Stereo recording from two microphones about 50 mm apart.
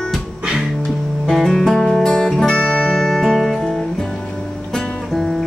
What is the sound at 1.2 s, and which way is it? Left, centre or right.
Music, centre.